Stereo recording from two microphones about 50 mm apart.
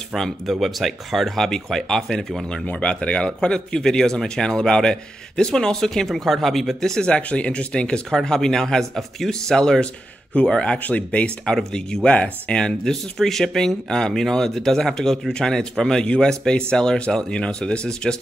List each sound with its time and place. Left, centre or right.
0.1 s speech: centre
2.6 s speech: left
7.1 s speech: left
11.4 s speech: centre